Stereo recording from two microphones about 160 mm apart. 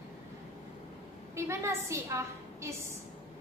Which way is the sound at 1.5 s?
15° right (ahead or behind).